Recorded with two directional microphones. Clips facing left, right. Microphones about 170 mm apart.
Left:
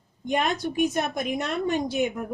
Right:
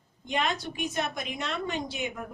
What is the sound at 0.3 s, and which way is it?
A woman's voice, 50° left (ahead or behind).